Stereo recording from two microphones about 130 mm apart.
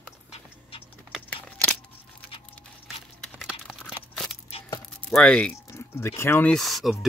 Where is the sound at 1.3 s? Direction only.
10° left (ahead or behind).